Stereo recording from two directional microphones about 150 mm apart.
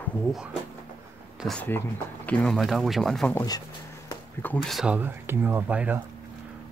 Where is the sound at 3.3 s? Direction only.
20° left (ahead or behind).